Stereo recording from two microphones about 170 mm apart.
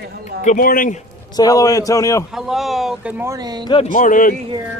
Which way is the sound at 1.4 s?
20° left (ahead or behind).